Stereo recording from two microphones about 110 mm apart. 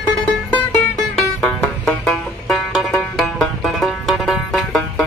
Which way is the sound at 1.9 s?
5° left (ahead or behind).